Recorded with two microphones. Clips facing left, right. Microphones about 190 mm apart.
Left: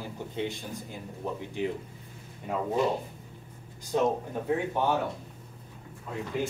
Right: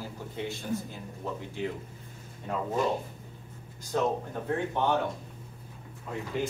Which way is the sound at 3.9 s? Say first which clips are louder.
Left 2 dB; 15° left (ahead or behind).